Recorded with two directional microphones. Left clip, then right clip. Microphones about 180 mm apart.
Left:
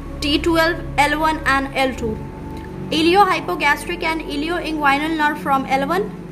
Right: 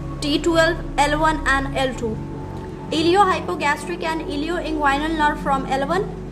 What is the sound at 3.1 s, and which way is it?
Speech, 15° left (ahead or behind).